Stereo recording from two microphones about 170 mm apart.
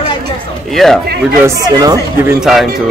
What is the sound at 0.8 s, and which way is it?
Speech, centre (ahead or behind).